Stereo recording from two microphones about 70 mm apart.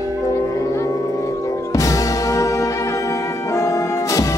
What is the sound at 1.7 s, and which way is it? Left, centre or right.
Music, left.